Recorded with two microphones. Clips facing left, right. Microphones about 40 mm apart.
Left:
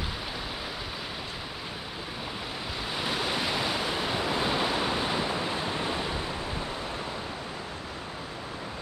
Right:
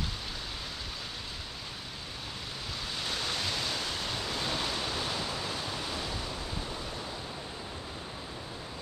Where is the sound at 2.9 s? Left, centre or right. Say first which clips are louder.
Left 5 dB; centre.